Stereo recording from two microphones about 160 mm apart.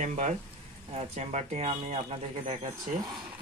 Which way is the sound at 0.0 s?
50° right (ahead or behind).